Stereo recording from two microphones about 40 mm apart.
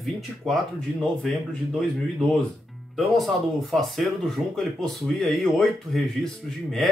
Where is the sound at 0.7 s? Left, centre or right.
Centre.